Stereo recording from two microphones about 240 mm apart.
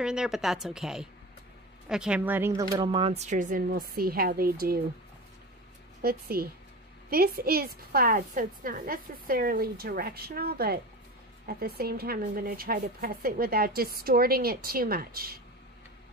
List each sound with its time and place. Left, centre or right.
0.0 s a woman's voice: centre; by 4.7 s right
6.0 s a woman's voice: right